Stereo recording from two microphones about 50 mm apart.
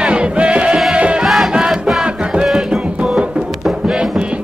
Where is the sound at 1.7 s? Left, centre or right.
Centre.